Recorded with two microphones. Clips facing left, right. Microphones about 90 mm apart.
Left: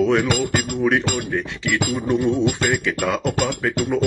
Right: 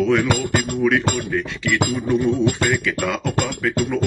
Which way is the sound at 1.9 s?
20° left (ahead or behind).